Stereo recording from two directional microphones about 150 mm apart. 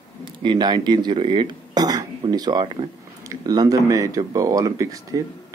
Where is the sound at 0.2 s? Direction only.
30° right (ahead or behind).